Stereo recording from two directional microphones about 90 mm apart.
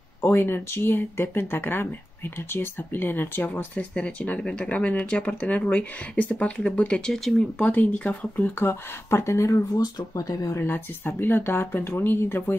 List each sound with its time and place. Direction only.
0.2 s speech: 25° left (ahead or behind)
9.8 s speech: 45° left (ahead or behind)
10.6 s speech: 25° left (ahead or behind)